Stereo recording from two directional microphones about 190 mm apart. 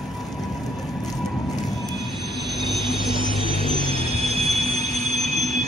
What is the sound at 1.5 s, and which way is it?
Train, centre (ahead or behind).